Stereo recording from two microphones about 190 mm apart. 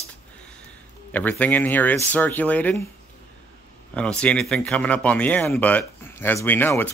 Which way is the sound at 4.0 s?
5° left (ahead or behind).